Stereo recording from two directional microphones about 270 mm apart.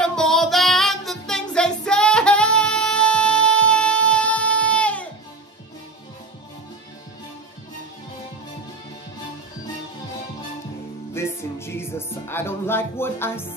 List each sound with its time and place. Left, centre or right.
0.0 s music: centre
11.1 s music: centre